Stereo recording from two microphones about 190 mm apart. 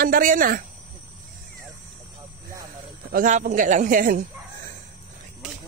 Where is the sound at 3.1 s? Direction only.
45° right (ahead or behind).